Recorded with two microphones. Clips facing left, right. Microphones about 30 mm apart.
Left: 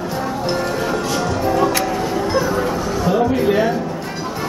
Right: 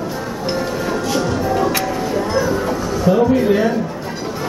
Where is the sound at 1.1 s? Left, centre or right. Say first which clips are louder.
Right 1 dB; centre.